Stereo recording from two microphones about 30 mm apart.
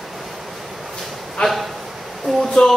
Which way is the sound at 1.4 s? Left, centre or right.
Left.